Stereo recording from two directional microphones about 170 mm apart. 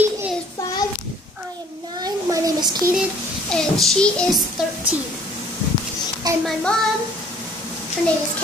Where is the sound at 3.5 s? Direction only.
5° left (ahead or behind).